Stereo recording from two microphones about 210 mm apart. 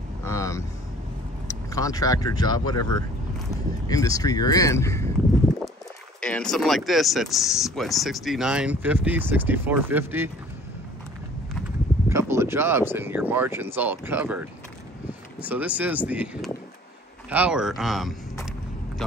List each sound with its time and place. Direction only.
0.2 s vehicle: 15° left (ahead or behind)
1.5 s speech: 15° left (ahead or behind)
6.2 s speech: 5° left (ahead or behind)
12.1 s speech: 15° right (ahead or behind)